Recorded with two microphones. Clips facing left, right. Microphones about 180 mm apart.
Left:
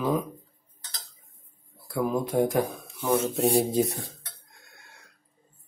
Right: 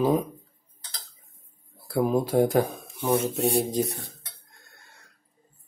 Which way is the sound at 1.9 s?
35° right (ahead or behind).